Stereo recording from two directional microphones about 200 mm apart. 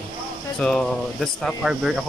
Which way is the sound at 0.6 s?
5° left (ahead or behind).